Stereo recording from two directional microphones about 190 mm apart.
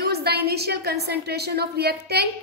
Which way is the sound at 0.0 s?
55° right (ahead or behind).